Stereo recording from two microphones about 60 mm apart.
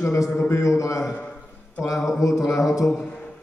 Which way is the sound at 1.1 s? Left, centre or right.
Left.